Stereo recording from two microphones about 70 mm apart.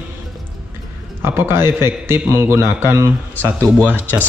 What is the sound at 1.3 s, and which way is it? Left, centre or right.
Speech, right.